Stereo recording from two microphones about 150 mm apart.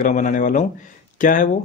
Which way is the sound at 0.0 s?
55° left (ahead or behind).